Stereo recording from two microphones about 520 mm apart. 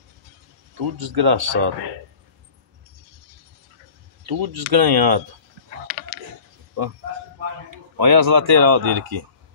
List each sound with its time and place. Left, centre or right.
0.7 s speech: right
4.3 s speech: right
7.7 s speech: right